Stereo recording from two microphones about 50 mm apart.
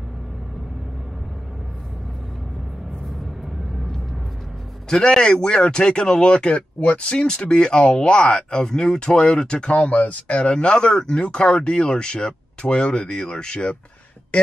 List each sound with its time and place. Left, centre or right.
4.8 s speech: centre
9.7 s speech: left